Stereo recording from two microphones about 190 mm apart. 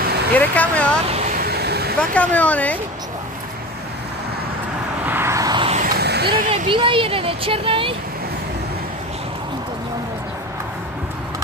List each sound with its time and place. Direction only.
0.3 s speech: 10° left (ahead or behind)
1.1 s vehicle: 45° right (ahead or behind)
2.0 s speech: 5° left (ahead or behind)
5.0 s vehicle: 10° right (ahead or behind)
5.8 s a sound: 55° right (ahead or behind)
6.5 s speech: 25° right (ahead or behind)